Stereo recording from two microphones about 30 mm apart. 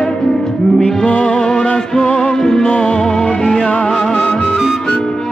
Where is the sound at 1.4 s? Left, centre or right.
Left.